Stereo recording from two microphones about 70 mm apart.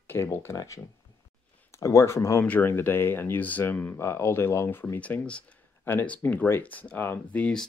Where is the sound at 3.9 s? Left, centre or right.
Left.